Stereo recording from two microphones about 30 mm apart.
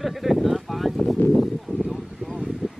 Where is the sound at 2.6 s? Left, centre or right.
Right.